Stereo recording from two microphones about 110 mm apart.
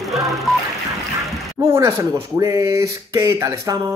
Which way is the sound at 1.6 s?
35° right (ahead or behind).